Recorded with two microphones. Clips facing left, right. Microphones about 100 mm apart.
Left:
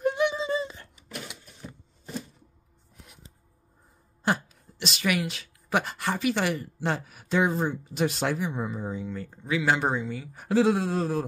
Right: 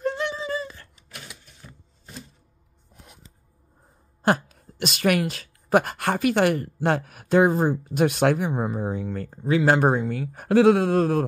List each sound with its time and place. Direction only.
0.0 s a sound: 15° left (ahead or behind)
4.2 s speech: 50° right (ahead or behind)
9.3 s speech: 40° right (ahead or behind); by 11.2 s 60° right (ahead or behind)